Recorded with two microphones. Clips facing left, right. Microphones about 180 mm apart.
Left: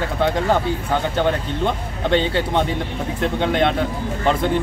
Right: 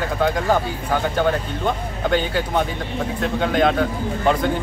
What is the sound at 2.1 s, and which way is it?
Speech, 25° left (ahead or behind).